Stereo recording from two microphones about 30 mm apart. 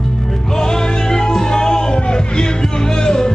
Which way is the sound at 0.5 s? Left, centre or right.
Left.